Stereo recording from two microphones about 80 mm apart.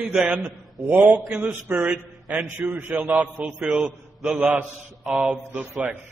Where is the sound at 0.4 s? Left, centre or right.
Centre.